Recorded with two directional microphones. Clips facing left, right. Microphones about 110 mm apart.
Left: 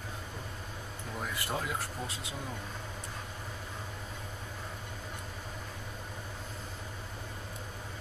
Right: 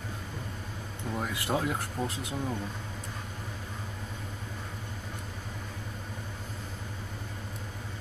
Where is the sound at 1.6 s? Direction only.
55° right (ahead or behind).